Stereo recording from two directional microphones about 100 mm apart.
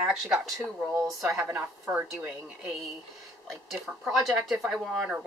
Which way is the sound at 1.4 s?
20° right (ahead or behind).